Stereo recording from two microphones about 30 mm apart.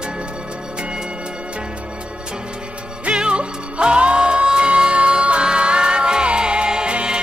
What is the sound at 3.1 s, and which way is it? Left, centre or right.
Music, right.